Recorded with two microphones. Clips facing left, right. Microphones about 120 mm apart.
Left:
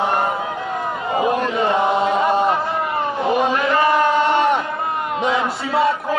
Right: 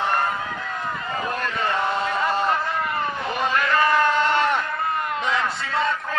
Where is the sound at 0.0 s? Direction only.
20° left (ahead or behind).